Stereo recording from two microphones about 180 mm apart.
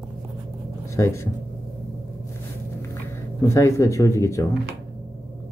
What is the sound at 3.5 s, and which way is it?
Speech, 15° left (ahead or behind).